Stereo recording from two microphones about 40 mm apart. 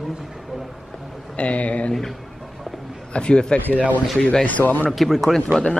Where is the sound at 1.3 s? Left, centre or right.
Left.